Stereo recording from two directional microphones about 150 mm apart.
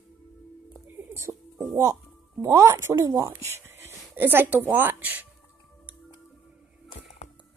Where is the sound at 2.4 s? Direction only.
20° right (ahead or behind).